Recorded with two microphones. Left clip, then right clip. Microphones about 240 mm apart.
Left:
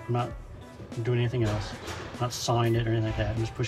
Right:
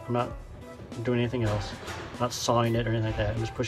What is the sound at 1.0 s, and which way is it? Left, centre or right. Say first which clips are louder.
Speech: right 1 dB; right.